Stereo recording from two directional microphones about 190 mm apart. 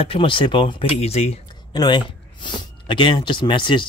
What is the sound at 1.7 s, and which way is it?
Speech, 25° left (ahead or behind).